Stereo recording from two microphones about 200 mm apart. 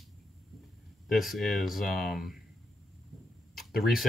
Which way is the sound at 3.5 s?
Centre (ahead or behind).